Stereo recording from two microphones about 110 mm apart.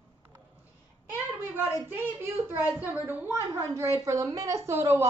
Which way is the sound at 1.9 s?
20° right (ahead or behind).